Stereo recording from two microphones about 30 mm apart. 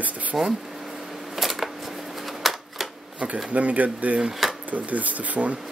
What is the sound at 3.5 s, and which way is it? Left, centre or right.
Speech, right.